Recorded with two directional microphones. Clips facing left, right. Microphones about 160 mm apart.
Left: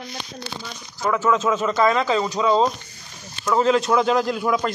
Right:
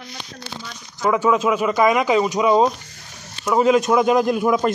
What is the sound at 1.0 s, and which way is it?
A man's voice, 15° right (ahead or behind).